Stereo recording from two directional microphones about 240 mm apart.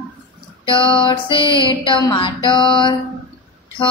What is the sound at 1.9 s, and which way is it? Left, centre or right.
Female singing, left.